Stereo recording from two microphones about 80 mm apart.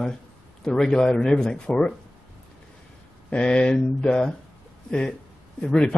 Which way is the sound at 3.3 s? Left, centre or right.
Centre.